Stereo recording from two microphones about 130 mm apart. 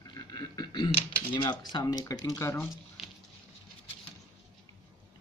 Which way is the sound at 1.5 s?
35° left (ahead or behind).